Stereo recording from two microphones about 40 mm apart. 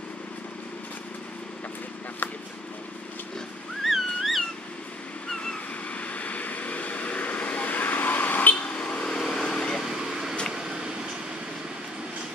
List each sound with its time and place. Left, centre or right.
3.8 s a sound: centre
5.3 s a sound: centre
5.9 s vehicle: left
8.5 s vehicle: left
8.9 s vehicle: left
9.8 s vehicle: centre